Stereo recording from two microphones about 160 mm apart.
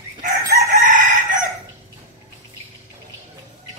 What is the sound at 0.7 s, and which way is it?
Chicken, 55° right (ahead or behind).